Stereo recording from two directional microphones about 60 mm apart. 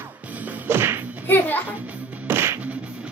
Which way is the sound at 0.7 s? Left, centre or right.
Right.